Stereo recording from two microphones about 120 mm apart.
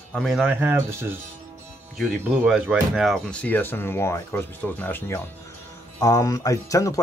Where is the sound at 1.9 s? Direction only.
5° right (ahead or behind); by 5.2 s 20° left (ahead or behind).